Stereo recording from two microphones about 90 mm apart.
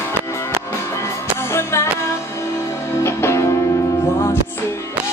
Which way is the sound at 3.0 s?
30° left (ahead or behind).